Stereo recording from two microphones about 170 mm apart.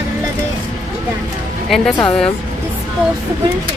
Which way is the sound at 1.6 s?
Centre (ahead or behind).